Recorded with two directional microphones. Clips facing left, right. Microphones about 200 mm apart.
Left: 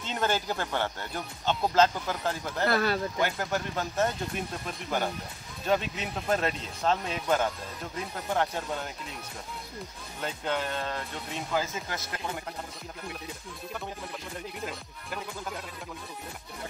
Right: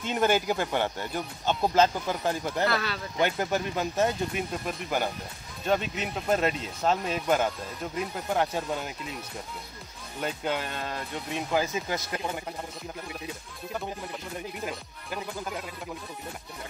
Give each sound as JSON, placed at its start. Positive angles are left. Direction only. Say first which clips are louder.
{"t": 0.0, "sound": "speech", "louder": "right 5 dB", "side_deg": -15}
{"t": 2.6, "sound": "speech", "louder": "left 4 dB", "side_deg": 50}
{"t": 3.2, "sound": "speech", "louder": "right 3 dB", "side_deg": -20}
{"t": 10.2, "sound": "speech", "louder": "right 1 dB", "side_deg": -10}
{"t": 14.6, "sound": "speech", "louder": "right 2 dB", "side_deg": -5}